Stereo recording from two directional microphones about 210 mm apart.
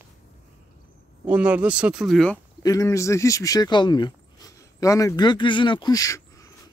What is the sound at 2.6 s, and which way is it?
A man's voice, 15° left (ahead or behind).